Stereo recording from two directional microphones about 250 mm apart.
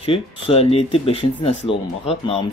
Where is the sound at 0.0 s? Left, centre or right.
Left.